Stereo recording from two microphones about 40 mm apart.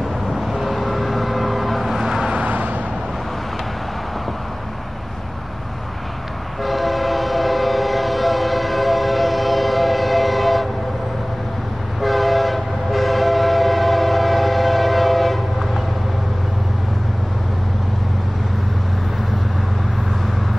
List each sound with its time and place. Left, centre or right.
0.3 s vehicle: centre
2.3 s vehicle: right
6.6 s train: centre
12.0 s train: centre